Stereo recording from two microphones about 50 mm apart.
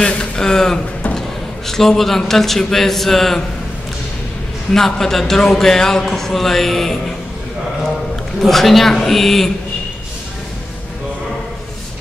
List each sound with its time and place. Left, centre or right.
0.0 s a sound: centre
1.7 s a man's voice: centre
4.7 s a man's voice: centre
8.4 s a man's voice: centre